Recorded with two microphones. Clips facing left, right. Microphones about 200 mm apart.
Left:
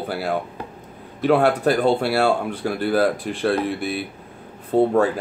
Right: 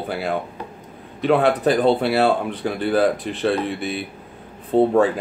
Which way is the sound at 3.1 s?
15° right (ahead or behind).